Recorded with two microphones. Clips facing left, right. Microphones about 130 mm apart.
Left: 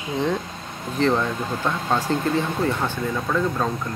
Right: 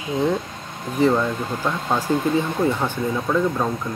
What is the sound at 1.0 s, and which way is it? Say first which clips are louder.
Speech: right 2 dB; 10° right (ahead or behind).